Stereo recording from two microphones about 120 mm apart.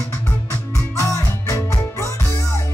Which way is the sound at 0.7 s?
25° left (ahead or behind).